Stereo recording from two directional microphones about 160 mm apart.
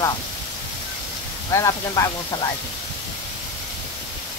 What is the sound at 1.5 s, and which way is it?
Speech, 20° left (ahead or behind).